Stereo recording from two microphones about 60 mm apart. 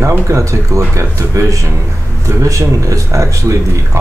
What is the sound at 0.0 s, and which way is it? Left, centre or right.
Speech, right.